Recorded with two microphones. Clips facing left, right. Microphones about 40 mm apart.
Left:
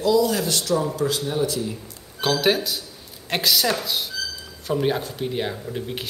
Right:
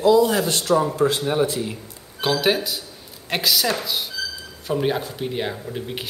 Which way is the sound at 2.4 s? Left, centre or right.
Centre.